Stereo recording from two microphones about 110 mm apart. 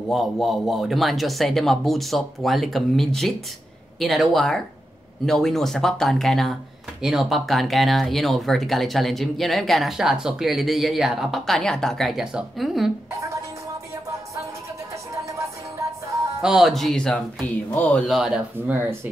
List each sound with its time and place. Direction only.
0.1 s speech: centre (ahead or behind)
15.2 s music: 30° right (ahead or behind)
16.3 s speech: 5° right (ahead or behind)
18.0 s speech: 5° right (ahead or behind)